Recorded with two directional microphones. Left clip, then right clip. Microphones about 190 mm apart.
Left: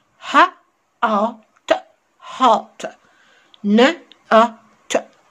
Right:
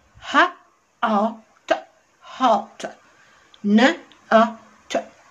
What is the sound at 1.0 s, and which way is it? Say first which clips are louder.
Hiccup: left 3 dB; 30° left (ahead or behind).